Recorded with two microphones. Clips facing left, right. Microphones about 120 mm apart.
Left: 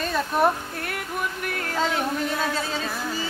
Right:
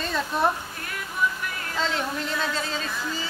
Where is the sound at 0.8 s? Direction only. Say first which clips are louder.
Right 2 dB; 60° left (ahead or behind).